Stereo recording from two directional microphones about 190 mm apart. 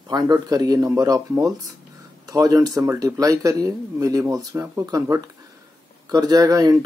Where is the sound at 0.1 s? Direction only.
20° right (ahead or behind).